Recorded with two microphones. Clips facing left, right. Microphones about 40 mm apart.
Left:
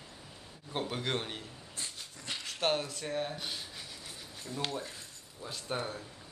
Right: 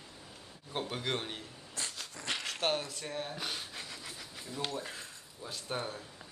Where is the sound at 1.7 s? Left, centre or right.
Right.